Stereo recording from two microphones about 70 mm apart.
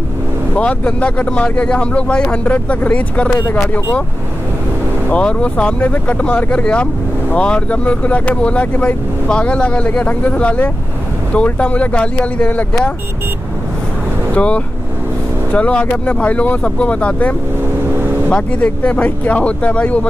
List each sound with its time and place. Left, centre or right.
0.6 s speech: centre
3.3 s speech: left
5.1 s speech: centre
14.3 s speech: centre